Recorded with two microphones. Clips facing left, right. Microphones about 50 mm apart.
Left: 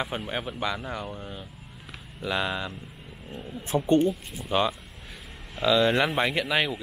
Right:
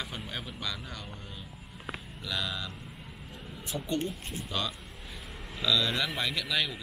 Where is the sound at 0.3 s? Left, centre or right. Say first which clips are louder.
Left 8 dB; left.